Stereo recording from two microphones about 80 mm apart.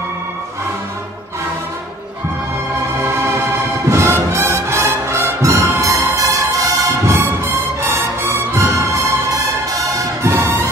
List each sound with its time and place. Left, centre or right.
3.9 s music: right